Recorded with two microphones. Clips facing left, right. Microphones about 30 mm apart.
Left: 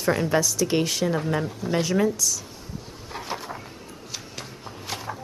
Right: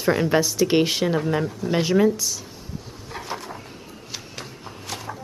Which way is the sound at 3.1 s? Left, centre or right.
Centre.